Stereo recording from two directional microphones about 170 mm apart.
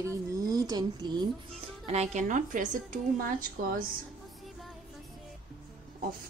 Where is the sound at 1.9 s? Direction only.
45° right (ahead or behind).